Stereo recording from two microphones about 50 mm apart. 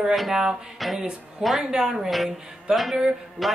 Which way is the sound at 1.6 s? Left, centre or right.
Centre.